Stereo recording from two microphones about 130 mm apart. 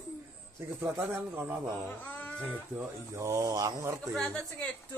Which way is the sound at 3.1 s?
25° right (ahead or behind).